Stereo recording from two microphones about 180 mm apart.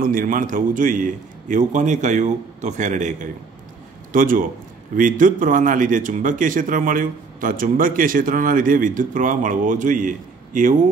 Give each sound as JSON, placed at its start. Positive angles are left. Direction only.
{"t": 0.0, "sound": "a man's voice", "side_deg": -50}